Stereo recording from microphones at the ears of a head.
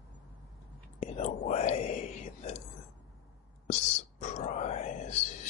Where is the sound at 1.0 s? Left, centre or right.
Left.